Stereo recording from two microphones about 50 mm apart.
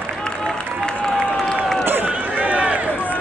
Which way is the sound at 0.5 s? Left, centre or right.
Centre.